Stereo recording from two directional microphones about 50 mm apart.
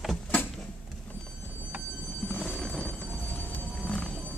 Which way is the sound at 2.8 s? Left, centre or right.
Left.